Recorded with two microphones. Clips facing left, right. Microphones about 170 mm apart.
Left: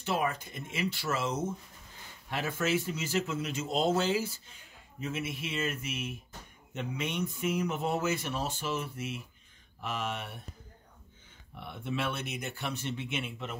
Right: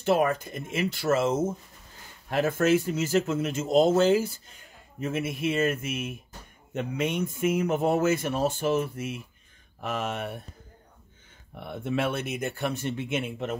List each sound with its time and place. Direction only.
0.0 s speech: 50° right (ahead or behind)
11.5 s speech: 50° right (ahead or behind)